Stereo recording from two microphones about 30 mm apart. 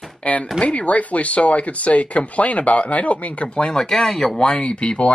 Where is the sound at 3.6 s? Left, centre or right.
Centre.